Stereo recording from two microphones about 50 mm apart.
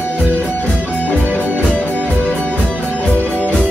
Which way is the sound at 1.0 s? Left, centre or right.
Left.